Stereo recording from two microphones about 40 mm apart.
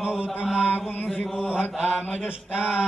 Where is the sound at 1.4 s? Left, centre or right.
Right.